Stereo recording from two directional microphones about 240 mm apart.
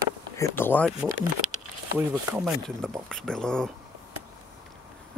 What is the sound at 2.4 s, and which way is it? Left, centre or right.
Speech, centre.